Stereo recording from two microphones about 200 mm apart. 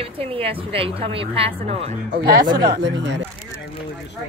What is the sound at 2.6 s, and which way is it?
Speech, 60° right (ahead or behind).